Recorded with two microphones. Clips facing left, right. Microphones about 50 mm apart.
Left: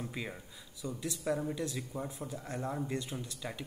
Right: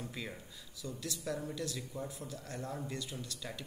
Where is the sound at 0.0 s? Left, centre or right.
Centre.